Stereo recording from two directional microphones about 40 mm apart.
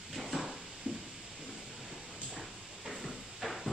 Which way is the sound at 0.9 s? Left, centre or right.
Right.